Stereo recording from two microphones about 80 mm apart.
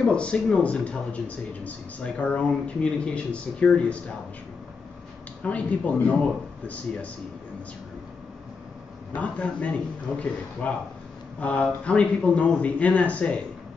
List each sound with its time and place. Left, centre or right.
0.0 s speech: centre
5.4 s speech: centre
9.1 s speech: centre